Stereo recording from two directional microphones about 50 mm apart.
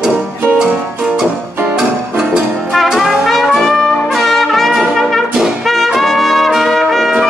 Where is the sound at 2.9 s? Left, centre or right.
Centre.